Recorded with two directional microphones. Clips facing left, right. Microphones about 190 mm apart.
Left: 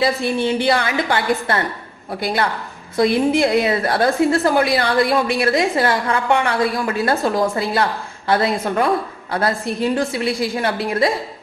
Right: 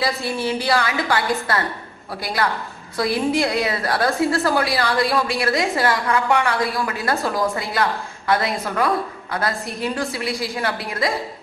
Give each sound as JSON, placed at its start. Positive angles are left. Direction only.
{"t": 0.5, "sound": "a woman's voice", "side_deg": 25}